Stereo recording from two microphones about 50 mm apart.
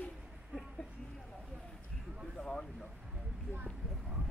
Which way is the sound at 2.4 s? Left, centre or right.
Centre.